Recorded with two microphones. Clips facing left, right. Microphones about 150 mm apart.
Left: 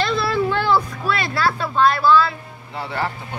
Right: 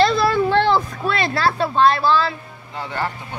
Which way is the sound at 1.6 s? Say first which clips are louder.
Right 3 dB; 25° right (ahead or behind).